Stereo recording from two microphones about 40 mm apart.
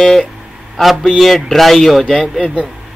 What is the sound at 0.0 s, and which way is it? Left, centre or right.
Speech, centre.